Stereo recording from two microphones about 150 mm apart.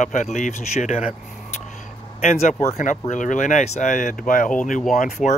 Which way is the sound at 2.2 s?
50° left (ahead or behind).